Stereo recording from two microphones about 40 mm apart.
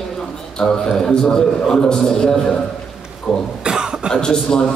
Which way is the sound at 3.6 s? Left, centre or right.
Centre.